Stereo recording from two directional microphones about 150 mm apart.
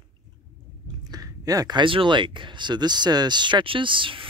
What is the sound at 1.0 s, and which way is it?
Speech, 25° right (ahead or behind).